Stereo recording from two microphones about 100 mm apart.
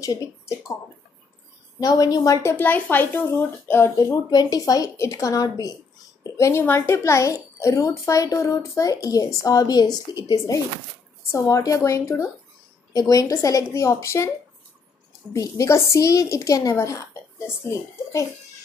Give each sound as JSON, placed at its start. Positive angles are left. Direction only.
{"t": 0.0, "sound": "speech", "side_deg": 35}
{"t": 1.8, "sound": "a woman's voice", "side_deg": 40}
{"t": 2.5, "sound": "a woman's voice", "side_deg": 20}
{"t": 11.3, "sound": "a woman's voice", "side_deg": 35}
{"t": 15.3, "sound": "a woman's voice", "side_deg": 35}